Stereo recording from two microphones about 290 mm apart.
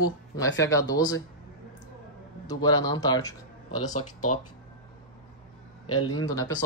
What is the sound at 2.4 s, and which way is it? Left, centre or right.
Speech, centre.